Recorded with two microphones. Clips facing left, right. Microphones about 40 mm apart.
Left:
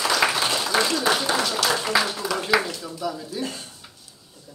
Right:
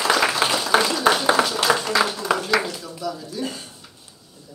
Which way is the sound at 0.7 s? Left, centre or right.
Right.